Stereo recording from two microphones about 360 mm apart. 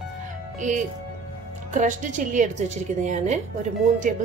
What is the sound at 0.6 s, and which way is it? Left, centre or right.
A woman's voice, right.